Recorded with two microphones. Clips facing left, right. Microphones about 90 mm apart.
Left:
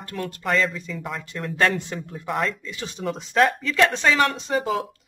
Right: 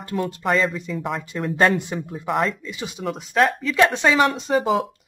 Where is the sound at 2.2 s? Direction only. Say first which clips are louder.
Right 3 dB; centre (ahead or behind).